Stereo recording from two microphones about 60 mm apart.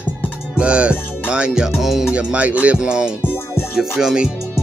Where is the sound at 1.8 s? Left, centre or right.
Centre.